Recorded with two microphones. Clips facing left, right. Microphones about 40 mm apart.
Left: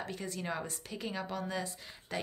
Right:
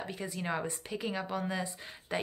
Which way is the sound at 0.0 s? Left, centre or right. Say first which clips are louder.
Right 1 dB; centre.